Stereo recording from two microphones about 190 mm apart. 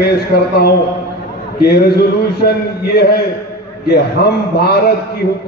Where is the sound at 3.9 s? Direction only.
55° left (ahead or behind).